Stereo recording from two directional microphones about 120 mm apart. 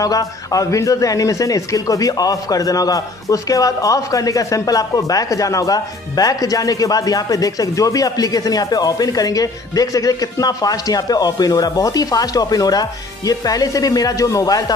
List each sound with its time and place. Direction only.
0.0 s a man's voice: 30° left (ahead or behind)